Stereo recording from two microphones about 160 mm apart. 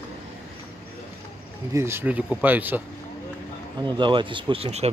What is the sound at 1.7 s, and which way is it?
Speech, 15° right (ahead or behind).